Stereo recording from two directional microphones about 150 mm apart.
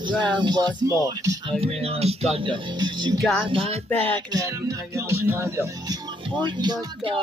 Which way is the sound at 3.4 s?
40° right (ahead or behind).